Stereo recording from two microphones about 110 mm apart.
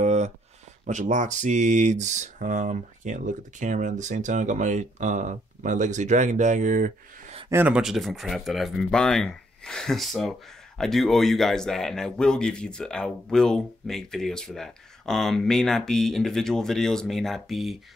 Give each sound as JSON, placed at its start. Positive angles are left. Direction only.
{"t": 0.0, "sound": "a sound", "side_deg": -90}
{"t": 0.8, "sound": "speech", "side_deg": -90}
{"t": 7.5, "sound": "a man's voice", "side_deg": -10}